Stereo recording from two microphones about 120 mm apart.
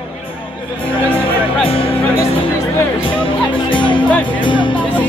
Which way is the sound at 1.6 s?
50° left (ahead or behind).